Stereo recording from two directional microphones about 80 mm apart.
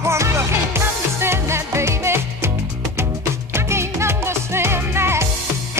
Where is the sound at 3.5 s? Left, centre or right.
Right.